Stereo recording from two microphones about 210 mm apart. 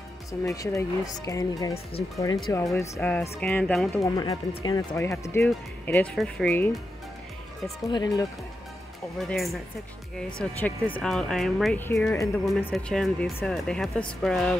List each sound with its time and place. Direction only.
0.3 s speech: 15° left (ahead or behind)
4.0 s speech: 20° left (ahead or behind)
7.8 s speech: 20° left (ahead or behind)
9.2 s speech: centre (ahead or behind)